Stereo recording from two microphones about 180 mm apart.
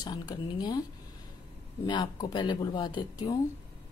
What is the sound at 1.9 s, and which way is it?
A woman's voice, 25° left (ahead or behind).